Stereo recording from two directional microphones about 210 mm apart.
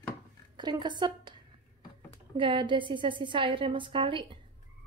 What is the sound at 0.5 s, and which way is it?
Speech, 20° right (ahead or behind).